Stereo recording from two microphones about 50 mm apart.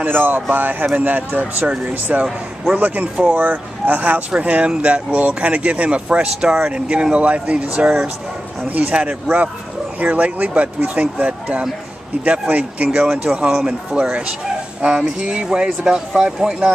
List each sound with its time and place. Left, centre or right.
0.0 s speech: right
2.1 s speech: right